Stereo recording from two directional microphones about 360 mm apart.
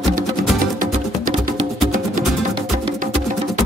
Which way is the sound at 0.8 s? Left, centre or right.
Right.